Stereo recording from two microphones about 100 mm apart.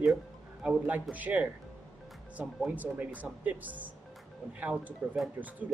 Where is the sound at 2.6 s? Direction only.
15° right (ahead or behind).